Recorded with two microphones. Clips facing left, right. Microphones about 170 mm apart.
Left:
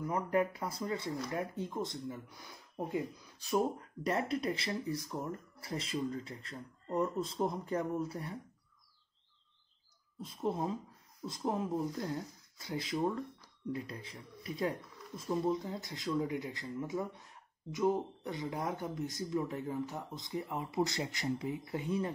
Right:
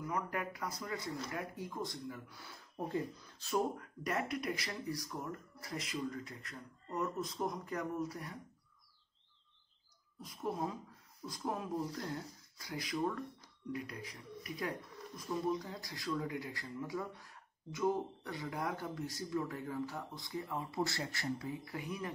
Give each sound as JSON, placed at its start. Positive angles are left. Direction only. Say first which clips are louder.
{"t": 0.1, "sound": "speech", "louder": "left 8 dB", "side_deg": 25}
{"t": 3.7, "sound": "speech", "louder": "left 4 dB", "side_deg": 30}
{"t": 10.2, "sound": "speech", "louder": "left 4 dB", "side_deg": 25}